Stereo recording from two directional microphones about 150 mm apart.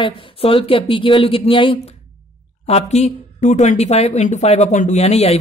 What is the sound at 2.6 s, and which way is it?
A woman's voice, 45° left (ahead or behind).